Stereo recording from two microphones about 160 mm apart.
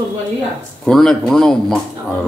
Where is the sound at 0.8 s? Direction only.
Centre (ahead or behind).